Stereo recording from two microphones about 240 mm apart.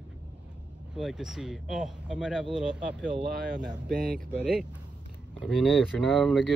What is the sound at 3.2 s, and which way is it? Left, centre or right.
Speech, right.